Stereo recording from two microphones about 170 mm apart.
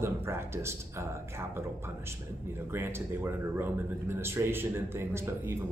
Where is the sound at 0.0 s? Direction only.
15° right (ahead or behind).